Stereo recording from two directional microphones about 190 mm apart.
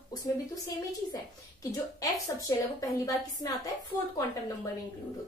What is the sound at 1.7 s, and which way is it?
A woman's voice, 20° left (ahead or behind).